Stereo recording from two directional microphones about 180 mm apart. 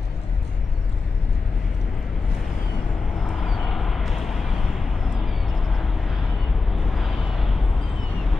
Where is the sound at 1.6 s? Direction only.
Centre (ahead or behind).